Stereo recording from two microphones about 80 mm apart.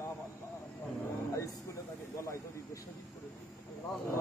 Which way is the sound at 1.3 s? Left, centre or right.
Left.